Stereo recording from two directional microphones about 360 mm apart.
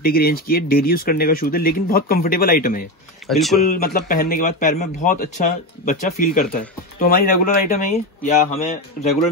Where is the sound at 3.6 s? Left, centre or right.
Left.